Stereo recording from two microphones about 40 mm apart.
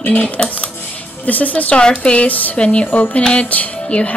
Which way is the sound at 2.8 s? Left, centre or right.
Left.